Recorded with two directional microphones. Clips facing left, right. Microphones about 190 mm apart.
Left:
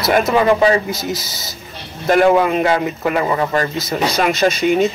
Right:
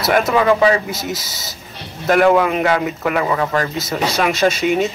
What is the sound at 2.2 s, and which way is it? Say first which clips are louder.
Speech: even; 10° left (ahead or behind).